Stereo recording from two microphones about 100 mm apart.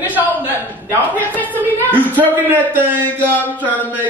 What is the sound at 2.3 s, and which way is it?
Speech, 20° right (ahead or behind).